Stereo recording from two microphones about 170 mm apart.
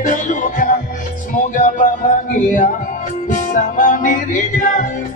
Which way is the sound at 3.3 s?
50° left (ahead or behind).